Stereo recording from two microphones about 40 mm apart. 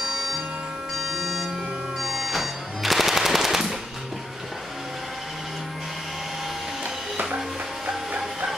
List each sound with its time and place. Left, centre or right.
0.0 s music: centre
2.0 s machine gun: centre